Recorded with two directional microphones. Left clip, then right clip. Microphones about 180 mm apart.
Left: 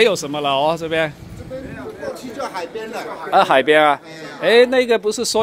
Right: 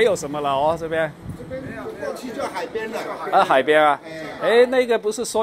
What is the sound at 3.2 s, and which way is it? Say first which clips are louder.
Speech: left 3 dB; 45° left (ahead or behind).